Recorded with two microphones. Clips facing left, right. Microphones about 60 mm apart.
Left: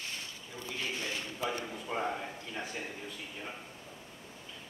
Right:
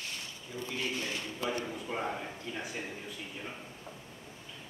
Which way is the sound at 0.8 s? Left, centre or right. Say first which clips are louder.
Even; left.